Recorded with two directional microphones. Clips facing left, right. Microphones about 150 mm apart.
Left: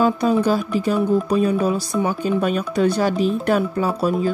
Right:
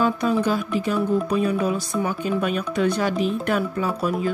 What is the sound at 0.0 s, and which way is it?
Speech, 35° left (ahead or behind).